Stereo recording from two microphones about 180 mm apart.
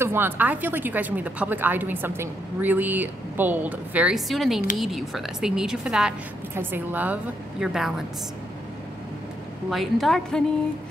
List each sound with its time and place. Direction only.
0.0 s a woman's voice: 10° right (ahead or behind)
9.7 s a woman's voice: centre (ahead or behind)